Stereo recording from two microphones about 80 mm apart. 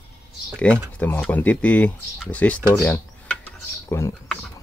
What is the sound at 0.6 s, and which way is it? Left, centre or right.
Speech, centre.